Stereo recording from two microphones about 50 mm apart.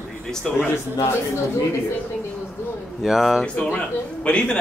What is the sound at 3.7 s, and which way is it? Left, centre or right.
Speech, left.